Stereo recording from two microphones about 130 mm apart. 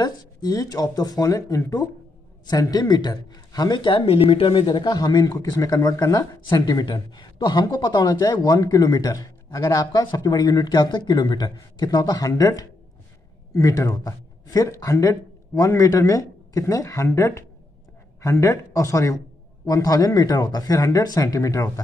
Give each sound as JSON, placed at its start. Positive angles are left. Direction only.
{"t": 0.0, "sound": "speech", "side_deg": 30}